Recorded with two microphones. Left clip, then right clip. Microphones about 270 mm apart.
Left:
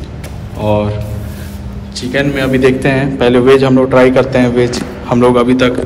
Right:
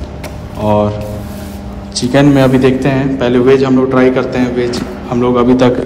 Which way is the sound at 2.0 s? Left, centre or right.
Centre.